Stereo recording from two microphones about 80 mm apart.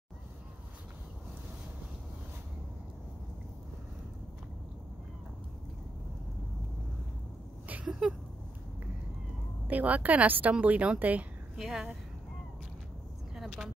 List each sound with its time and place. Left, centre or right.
8.0 s a sound: centre
9.7 s speech: centre
11.5 s speech: centre
13.3 s vehicle: centre